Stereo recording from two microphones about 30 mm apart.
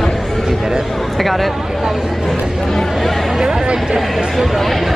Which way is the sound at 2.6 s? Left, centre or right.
Centre.